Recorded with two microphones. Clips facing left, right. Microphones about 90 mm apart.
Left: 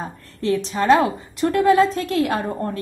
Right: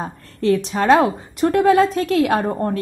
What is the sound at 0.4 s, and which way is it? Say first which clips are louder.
Speech: right 3 dB; 55° right (ahead or behind).